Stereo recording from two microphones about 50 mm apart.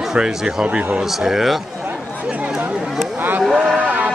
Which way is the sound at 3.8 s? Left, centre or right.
Right.